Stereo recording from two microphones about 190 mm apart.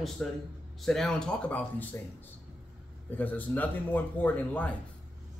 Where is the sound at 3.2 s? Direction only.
10° left (ahead or behind).